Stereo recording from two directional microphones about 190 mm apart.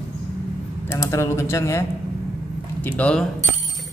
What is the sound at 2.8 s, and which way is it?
Speech, 5° left (ahead or behind).